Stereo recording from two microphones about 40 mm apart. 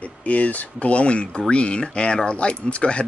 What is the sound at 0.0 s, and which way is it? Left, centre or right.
Speech, left.